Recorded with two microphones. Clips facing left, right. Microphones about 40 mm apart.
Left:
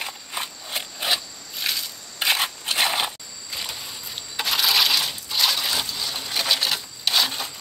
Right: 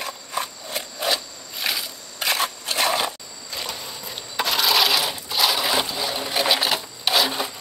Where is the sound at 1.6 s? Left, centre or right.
Centre.